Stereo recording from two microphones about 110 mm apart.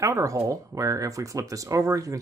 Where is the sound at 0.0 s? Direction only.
30° right (ahead or behind).